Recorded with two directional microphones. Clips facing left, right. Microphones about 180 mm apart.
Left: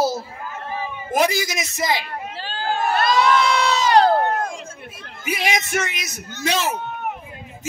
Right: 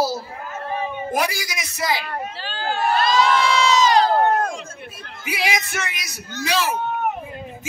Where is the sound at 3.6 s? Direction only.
60° left (ahead or behind).